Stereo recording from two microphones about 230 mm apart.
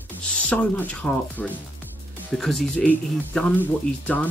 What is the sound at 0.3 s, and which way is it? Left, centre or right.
Speech, centre.